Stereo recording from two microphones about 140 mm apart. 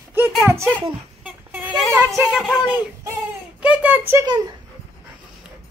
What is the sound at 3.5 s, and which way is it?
Speech, 10° right (ahead or behind).